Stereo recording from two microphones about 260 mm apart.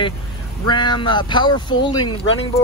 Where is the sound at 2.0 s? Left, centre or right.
Left.